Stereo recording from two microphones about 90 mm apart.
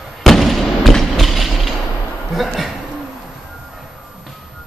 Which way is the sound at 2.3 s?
Centre (ahead or behind).